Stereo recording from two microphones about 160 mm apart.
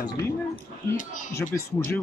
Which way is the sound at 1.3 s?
20° left (ahead or behind).